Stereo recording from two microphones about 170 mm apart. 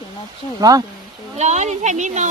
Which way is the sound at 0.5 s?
20° right (ahead or behind).